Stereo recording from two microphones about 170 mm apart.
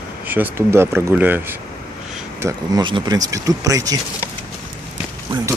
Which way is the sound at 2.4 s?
25° right (ahead or behind).